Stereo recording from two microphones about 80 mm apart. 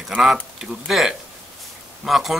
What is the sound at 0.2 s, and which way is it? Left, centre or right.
Speech, centre.